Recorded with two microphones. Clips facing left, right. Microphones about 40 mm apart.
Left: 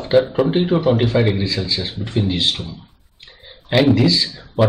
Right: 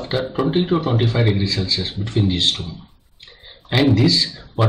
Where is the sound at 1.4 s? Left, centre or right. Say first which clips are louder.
Even; centre.